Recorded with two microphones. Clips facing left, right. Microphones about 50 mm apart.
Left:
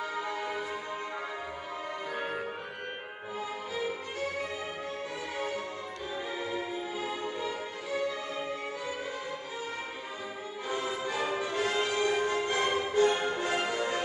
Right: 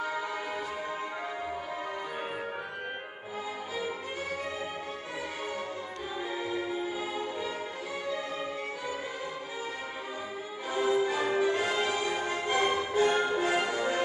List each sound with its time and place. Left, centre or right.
6.9 s music: centre
10.7 s music: centre